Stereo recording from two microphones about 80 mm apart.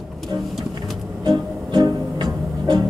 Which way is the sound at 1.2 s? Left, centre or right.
Right.